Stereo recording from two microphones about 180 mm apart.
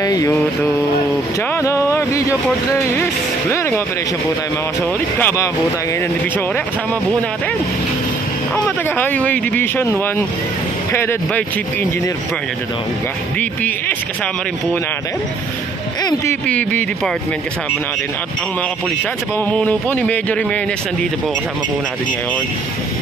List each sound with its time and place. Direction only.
0.0 s a sound: 20° left (ahead or behind)
1.5 s a sound: 15° left (ahead or behind)
3.0 s speech: 15° left (ahead or behind)
5.2 s speech: 15° left (ahead or behind)
8.6 s speech: 10° left (ahead or behind)
13.4 s speech: 10° left (ahead or behind)
16.0 s speech: 20° left (ahead or behind)
16.4 s speech: 10° left (ahead or behind)
19.3 s speech: 10° left (ahead or behind)